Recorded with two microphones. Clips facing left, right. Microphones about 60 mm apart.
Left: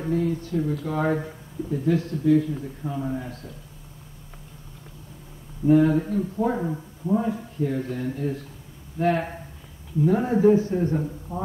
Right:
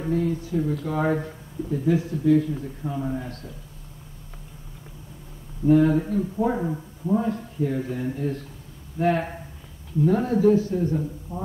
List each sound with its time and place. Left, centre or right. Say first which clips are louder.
0.0 s a man's voice: even; centre
2.0 s speech: right 1 dB; centre
2.2 s a man's voice: even; centre
5.7 s a man's voice: even; centre
10.2 s speech: left 1 dB; left